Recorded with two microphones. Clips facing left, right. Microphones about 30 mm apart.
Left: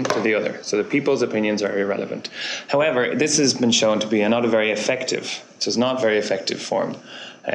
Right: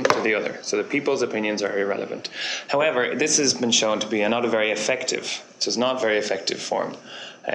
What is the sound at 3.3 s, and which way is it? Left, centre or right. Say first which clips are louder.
Speech: left 3 dB; centre.